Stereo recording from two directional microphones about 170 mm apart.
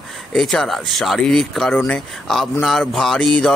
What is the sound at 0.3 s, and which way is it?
Speech, 5° left (ahead or behind).